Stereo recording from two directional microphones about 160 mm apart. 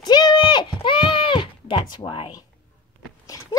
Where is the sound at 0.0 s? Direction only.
25° left (ahead or behind).